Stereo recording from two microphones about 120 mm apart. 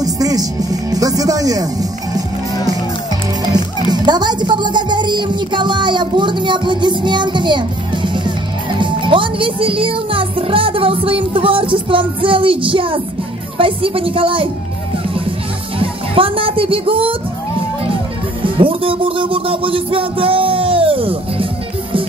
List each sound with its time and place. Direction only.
0.0 s music: 30° right (ahead or behind)
3.9 s speech: 35° right (ahead or behind)
15.8 s speech: 50° right (ahead or behind)
18.4 s music: 45° right (ahead or behind)